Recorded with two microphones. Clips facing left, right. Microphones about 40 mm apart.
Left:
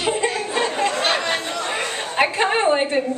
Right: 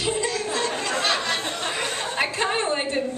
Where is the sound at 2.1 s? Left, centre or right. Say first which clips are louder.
Left 7 dB; left.